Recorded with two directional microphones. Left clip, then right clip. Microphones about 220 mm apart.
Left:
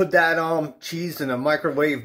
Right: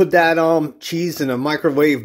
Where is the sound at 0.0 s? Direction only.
45° right (ahead or behind).